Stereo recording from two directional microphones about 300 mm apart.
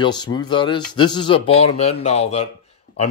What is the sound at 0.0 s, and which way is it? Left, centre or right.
Speech, centre.